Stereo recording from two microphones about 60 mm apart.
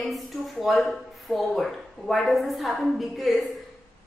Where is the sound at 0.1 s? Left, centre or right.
Centre.